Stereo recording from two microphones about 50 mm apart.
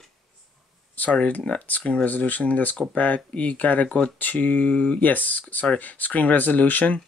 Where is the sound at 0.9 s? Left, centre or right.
Left.